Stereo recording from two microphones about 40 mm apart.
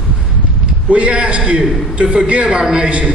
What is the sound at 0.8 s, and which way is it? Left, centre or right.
A man's voice, right.